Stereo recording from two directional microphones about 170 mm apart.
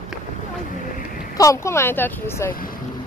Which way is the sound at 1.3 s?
20° left (ahead or behind).